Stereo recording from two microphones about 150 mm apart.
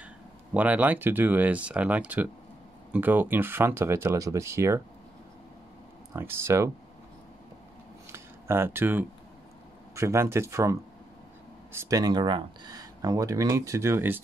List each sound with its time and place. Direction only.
0.0 s speech: 10° right (ahead or behind)
6.1 s speech: 15° right (ahead or behind)
8.1 s a sound: 15° right (ahead or behind)
9.9 s speech: 20° right (ahead or behind)